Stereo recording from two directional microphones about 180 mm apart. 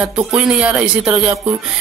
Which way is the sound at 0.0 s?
5° right (ahead or behind).